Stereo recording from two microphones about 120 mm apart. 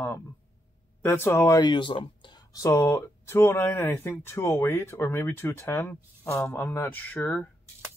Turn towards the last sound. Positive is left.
turn(degrees=10)  # may be behind; listen again after turning